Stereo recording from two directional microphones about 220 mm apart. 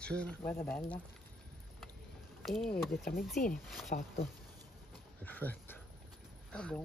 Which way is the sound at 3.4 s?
40° left (ahead or behind).